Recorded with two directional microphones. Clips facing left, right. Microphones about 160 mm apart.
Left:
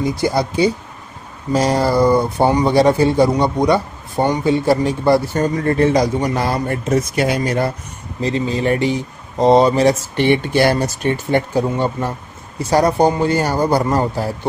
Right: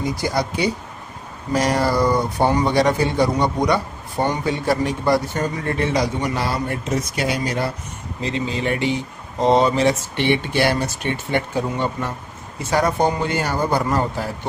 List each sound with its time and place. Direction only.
0.1 s speech: 25° left (ahead or behind); by 7.7 s 50° left (ahead or behind)
8.2 s speech: 40° left (ahead or behind)